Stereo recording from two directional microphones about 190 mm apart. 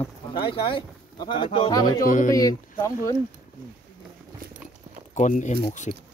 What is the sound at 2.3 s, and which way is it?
Speech, 20° left (ahead or behind).